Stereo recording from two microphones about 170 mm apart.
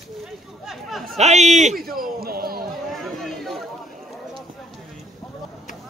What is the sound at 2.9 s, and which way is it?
Speech, centre (ahead or behind).